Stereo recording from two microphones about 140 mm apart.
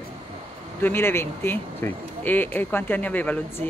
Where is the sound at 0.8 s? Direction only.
15° left (ahead or behind).